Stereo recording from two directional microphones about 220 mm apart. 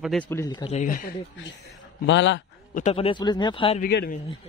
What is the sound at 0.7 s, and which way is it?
Speech, 40° left (ahead or behind).